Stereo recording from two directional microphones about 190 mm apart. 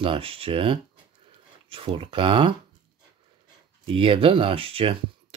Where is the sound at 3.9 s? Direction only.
30° right (ahead or behind).